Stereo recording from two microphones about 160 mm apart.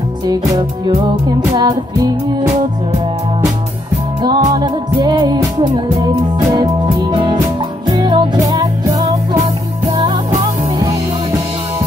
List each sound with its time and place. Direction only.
0.3 s music: 25° right (ahead or behind)
4.2 s music: 25° right (ahead or behind)